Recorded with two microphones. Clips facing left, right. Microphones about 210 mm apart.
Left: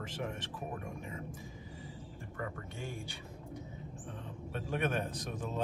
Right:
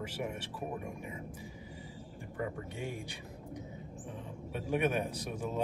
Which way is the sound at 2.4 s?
15° right (ahead or behind).